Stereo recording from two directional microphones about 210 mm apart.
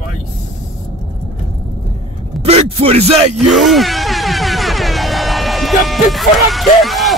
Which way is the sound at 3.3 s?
Centre (ahead or behind).